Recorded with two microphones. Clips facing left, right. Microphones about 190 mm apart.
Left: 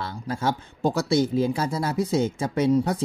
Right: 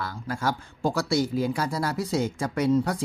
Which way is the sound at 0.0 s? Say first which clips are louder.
Left 2 dB; 25° left (ahead or behind).